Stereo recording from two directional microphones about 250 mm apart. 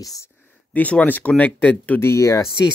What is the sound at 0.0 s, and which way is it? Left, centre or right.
Speech, centre.